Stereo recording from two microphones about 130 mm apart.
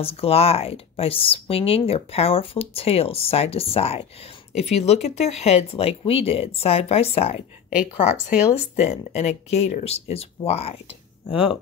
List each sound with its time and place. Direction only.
0.0 s speech: 50° left (ahead or behind)
8.7 s speech: 60° left (ahead or behind)